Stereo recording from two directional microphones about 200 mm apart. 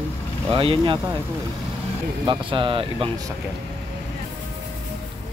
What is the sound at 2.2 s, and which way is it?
Speech, 25° right (ahead or behind).